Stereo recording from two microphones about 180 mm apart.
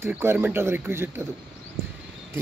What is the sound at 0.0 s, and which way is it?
Speech, 15° right (ahead or behind).